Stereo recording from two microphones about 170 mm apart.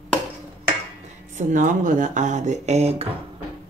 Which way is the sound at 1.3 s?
50° right (ahead or behind).